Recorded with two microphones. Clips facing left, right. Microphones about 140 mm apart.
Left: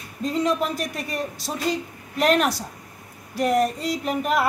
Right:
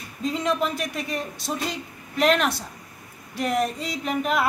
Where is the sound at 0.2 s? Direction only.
40° left (ahead or behind).